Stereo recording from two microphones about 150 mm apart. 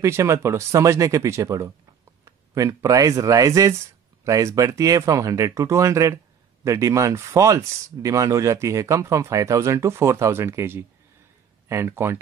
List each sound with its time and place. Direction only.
0.0 s speech: 20° right (ahead or behind)